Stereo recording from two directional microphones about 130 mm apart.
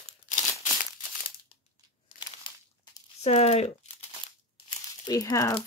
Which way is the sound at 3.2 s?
55° left (ahead or behind).